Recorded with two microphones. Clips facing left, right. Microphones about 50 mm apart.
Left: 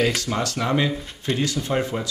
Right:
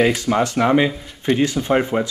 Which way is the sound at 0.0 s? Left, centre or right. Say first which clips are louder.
Right 6 dB; right.